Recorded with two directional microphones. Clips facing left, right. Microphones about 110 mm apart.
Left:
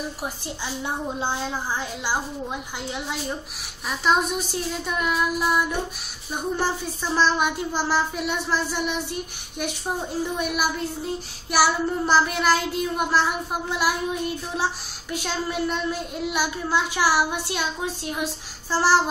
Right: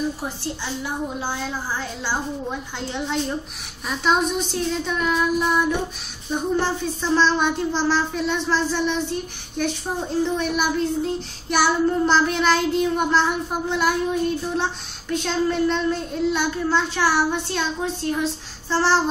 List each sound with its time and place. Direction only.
0.8 s a woman's voice: 20° left (ahead or behind)
2.9 s child singing: 5° left (ahead or behind)
10.2 s child singing: 10° left (ahead or behind)